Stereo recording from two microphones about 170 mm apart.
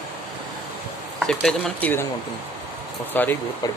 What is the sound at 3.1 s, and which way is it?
Speech, 10° left (ahead or behind).